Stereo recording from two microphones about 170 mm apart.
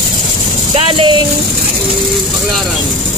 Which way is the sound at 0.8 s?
30° right (ahead or behind).